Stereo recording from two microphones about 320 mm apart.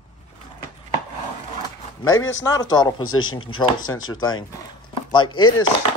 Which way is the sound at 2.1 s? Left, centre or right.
Left.